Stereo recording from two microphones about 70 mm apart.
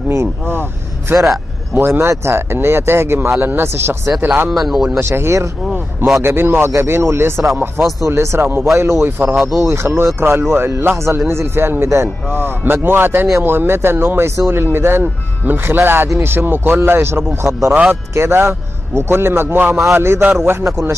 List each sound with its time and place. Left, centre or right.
0.1 s speech: right
1.1 s a man's voice: centre
1.8 s speech: right
4.5 s a man's voice: centre
5.0 s speech: right
9.4 s a man's voice: centre
9.7 s speech: right